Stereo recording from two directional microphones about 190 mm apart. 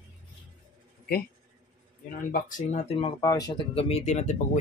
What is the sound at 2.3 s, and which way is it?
Speech, 45° left (ahead or behind).